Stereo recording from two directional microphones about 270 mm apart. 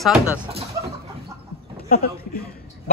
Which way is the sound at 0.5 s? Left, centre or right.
Right.